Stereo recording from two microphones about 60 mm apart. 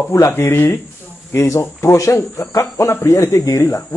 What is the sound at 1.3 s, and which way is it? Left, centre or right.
Speech, left.